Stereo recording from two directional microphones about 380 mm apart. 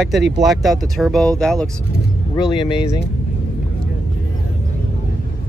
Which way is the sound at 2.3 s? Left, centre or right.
Centre.